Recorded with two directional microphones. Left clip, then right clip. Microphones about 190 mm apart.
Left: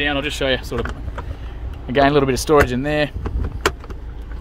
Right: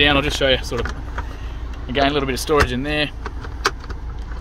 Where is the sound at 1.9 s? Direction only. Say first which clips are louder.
Left 4 dB; 45° left (ahead or behind).